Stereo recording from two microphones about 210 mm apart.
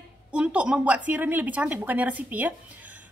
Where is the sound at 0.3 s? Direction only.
5° right (ahead or behind).